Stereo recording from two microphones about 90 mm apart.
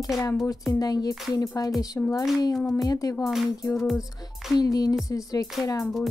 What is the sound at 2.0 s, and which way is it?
Speech, 20° left (ahead or behind).